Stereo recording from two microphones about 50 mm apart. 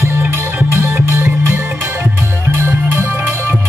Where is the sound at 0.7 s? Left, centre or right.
Right.